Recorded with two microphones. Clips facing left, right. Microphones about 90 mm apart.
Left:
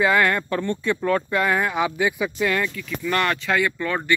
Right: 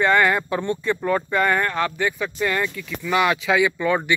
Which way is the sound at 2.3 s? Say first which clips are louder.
Even; centre (ahead or behind).